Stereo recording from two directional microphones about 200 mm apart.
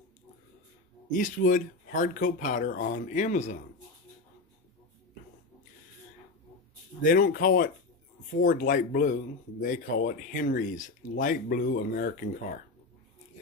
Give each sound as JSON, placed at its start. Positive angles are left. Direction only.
{"t": 1.1, "sound": "speech", "side_deg": 40}
{"t": 7.0, "sound": "speech", "side_deg": 45}